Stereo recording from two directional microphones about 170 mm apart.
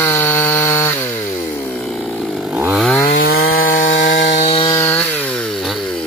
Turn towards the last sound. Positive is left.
turn(degrees=10)  # may be behind; listen again after turning